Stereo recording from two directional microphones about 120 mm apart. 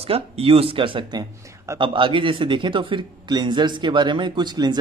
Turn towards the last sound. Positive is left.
turn(degrees=-35)  # may be behind; listen again after turning